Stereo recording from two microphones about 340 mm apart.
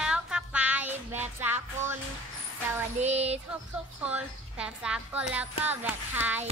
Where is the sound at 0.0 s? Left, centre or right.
Centre.